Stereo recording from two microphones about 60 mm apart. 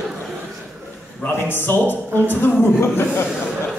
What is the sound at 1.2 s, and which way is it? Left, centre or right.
A man's voice, left.